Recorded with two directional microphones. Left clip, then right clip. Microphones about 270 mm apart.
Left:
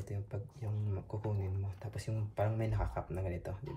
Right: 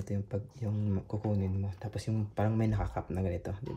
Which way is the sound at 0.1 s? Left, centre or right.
Right.